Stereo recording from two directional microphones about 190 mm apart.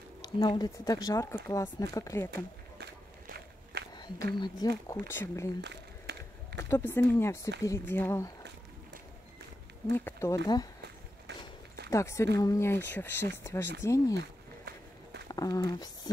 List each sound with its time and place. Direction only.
0.2 s speech: 20° left (ahead or behind)
2.8 s walk: 60° right (ahead or behind)
3.9 s a sound: 20° left (ahead or behind)
4.4 s speech: 20° left (ahead or behind)
5.6 s a sound: 65° right (ahead or behind)
6.7 s speech: 10° left (ahead or behind)
9.8 s speech: 10° left (ahead or behind)
11.9 s speech: 15° left (ahead or behind)
15.2 s speech: 20° left (ahead or behind)